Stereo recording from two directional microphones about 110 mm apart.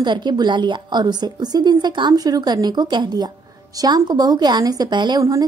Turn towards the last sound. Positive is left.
turn(degrees=-35)  # may be behind; listen again after turning